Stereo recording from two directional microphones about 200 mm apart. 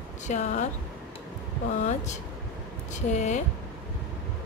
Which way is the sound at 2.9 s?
35° left (ahead or behind).